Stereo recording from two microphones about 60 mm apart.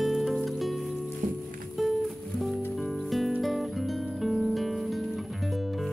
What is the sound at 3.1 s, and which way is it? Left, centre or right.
Music, centre.